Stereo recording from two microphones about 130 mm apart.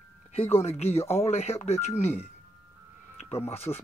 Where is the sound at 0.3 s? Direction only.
50° left (ahead or behind).